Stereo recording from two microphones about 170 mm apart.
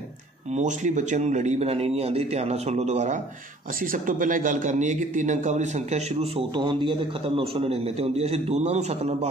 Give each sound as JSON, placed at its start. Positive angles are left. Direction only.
{"t": 0.6, "sound": "a man's voice", "side_deg": -45}